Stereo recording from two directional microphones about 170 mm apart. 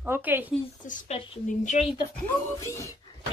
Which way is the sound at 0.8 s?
45° left (ahead or behind).